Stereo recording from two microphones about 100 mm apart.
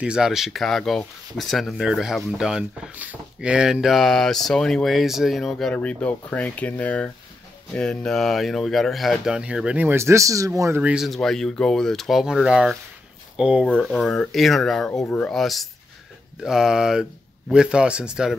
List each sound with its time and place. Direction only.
0.0 s speech: 5° right (ahead or behind)
9.8 s speech: 25° right (ahead or behind)
10.8 s speech: 10° right (ahead or behind)
11.1 s speech: 5° left (ahead or behind)
13.7 s speech: 5° left (ahead or behind)
15.0 s speech: 15° left (ahead or behind)
15.3 s speech: centre (ahead or behind)